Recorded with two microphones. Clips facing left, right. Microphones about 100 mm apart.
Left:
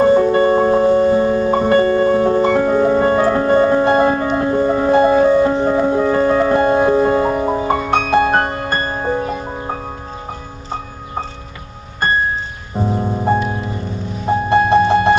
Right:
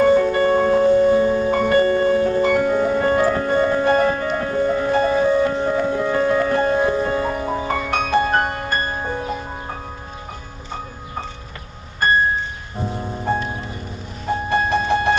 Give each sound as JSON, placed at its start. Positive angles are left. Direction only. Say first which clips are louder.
{"t": 0.0, "sound": "music", "louder": "left 3 dB", "side_deg": 30}
{"t": 12.7, "sound": "music", "louder": "left 8 dB", "side_deg": 25}
{"t": 14.5, "sound": "music", "louder": "left 7 dB", "side_deg": 30}